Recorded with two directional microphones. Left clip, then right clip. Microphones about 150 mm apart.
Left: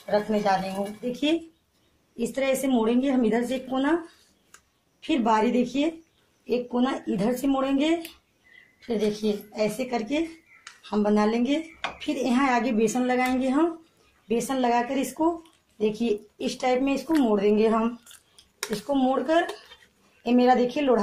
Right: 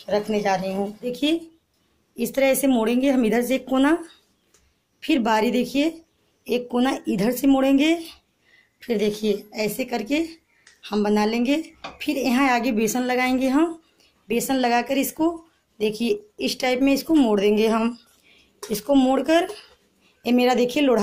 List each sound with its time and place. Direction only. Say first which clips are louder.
0.4 s a woman's voice: right 2 dB; 55° right (ahead or behind)
1.1 s a woman's voice: right 2 dB; 25° right (ahead or behind)
2.1 s speech: right 5 dB; 40° right (ahead or behind)
5.0 s a woman's voice: right 2 dB; 30° right (ahead or behind)
8.7 s a woman's voice: right 3 dB; 55° right (ahead or behind)
9.8 s a woman's voice: right 3 dB; 35° right (ahead or behind)
18.7 s speech: right 5 dB; 40° right (ahead or behind)